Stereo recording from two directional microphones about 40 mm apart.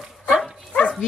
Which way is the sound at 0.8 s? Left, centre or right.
Left.